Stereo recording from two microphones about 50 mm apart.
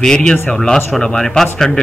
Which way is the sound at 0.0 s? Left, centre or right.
Centre.